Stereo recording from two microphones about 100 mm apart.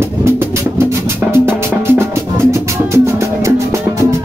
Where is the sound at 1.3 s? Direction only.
25° right (ahead or behind).